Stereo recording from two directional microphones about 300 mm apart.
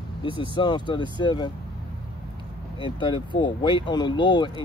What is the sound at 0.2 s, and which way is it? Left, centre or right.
Speech, centre.